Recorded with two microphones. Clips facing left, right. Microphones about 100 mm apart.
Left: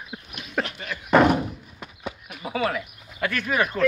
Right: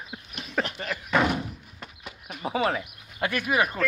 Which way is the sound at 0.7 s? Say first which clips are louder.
Right 2 dB; 40° right (ahead or behind).